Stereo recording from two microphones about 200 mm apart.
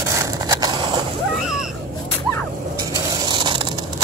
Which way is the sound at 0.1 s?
15° right (ahead or behind).